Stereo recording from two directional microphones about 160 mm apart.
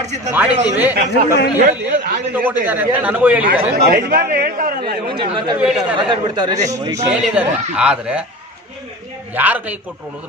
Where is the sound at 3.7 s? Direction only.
65° right (ahead or behind).